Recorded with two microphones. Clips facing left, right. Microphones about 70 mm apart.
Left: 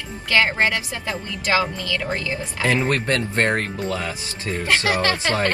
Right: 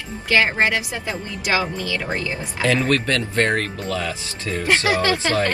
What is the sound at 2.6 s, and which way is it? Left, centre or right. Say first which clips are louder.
Speech: right 1 dB; left.